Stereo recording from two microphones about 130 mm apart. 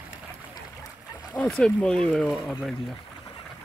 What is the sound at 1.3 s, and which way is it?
Speech, 10° left (ahead or behind).